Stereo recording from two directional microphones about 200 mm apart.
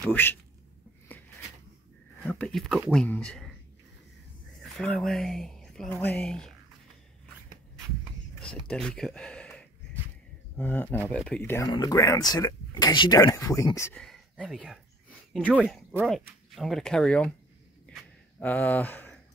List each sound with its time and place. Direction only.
0.0 s speech: 10° left (ahead or behind)
2.2 s speech: centre (ahead or behind)
4.7 s speech: centre (ahead or behind)
8.4 s speech: 5° left (ahead or behind)
14.0 s a sound: centre (ahead or behind)
16.1 s speech: centre (ahead or behind)
17.9 s a sound: 5° left (ahead or behind)
18.4 s speech: 10° left (ahead or behind)